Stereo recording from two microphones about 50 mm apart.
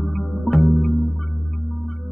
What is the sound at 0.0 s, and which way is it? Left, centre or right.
Music, centre.